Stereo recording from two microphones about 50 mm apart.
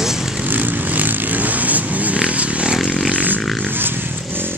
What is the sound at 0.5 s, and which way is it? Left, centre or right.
Vehicle, right.